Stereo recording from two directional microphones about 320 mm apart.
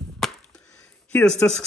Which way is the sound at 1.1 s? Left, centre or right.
Centre.